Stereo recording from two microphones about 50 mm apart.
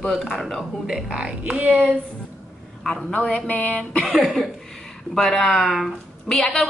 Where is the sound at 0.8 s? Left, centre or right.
Centre.